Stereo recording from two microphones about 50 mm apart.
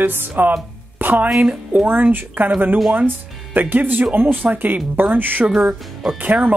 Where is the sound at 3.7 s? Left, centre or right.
Right.